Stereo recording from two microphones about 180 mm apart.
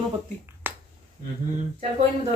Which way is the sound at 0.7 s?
10° right (ahead or behind).